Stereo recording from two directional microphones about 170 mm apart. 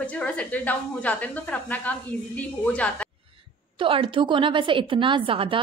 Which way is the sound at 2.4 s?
10° left (ahead or behind).